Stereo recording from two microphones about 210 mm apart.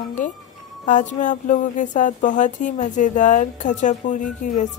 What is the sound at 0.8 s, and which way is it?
Speech, 35° left (ahead or behind).